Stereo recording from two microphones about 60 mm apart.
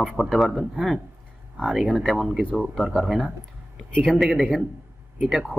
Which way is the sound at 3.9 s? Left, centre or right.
Centre.